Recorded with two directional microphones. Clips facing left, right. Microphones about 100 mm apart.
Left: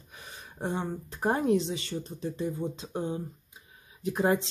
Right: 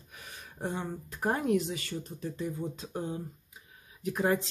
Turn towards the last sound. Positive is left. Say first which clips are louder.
# left 2 dB
turn(degrees=25)  # may be behind; listen again after turning